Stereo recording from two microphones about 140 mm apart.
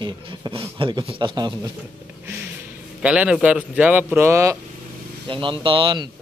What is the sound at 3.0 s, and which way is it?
Speech, 10° right (ahead or behind).